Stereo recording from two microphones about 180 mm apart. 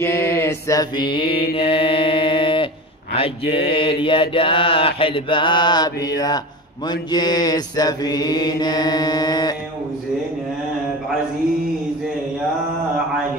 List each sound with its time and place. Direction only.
0.0 s mantra: 15° left (ahead or behind)
1.2 s mantra: 60° left (ahead or behind)
1.5 s mantra: 30° left (ahead or behind)
3.7 s mantra: 30° left (ahead or behind)